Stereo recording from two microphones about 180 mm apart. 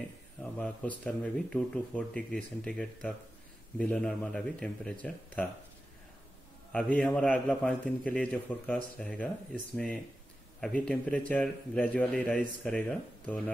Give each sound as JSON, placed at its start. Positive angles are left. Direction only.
{"t": 0.4, "sound": "a man's voice", "side_deg": 5}
{"t": 6.7, "sound": "a man's voice", "side_deg": 5}
{"t": 10.6, "sound": "a man's voice", "side_deg": 5}